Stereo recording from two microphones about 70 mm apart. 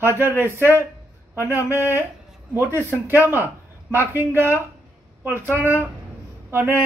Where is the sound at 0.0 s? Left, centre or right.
Right.